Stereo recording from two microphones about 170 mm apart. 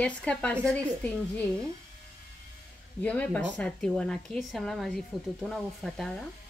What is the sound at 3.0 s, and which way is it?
Speech, 10° left (ahead or behind).